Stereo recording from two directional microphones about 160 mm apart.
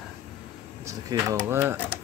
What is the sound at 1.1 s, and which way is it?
Speech, 25° right (ahead or behind).